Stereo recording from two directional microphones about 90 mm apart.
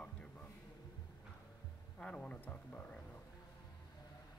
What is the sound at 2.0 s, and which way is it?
Speech, 15° left (ahead or behind).